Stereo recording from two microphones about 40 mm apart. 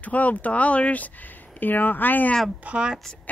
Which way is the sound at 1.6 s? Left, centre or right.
Left.